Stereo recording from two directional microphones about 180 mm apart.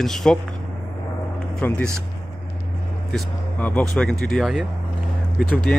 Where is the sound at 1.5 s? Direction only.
5° left (ahead or behind).